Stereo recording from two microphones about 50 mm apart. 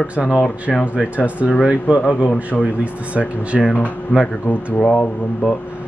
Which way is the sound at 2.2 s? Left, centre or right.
Left.